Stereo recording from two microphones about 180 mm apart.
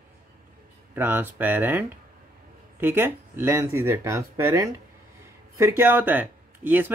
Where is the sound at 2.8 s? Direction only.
10° right (ahead or behind).